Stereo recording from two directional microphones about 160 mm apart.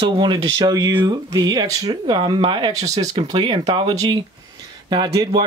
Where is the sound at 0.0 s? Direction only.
30° right (ahead or behind).